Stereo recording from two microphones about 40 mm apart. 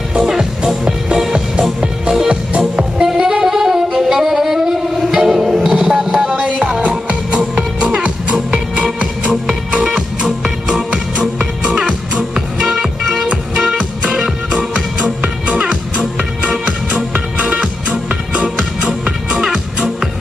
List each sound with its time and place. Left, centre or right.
0.2 s music: centre
3.1 s saxophone: centre
6.0 s music: centre
9.2 s music: centre
12.4 s music: right
14.1 s music: centre
15.2 s music: right; by 20.1 s centre